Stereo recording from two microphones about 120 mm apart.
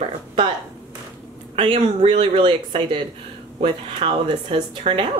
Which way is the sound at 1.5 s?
55° right (ahead or behind).